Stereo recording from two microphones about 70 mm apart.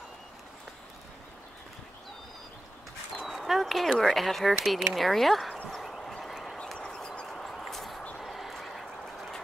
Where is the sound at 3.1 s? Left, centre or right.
Centre.